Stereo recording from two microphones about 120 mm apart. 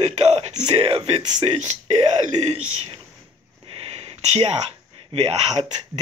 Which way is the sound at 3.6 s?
55° right (ahead or behind).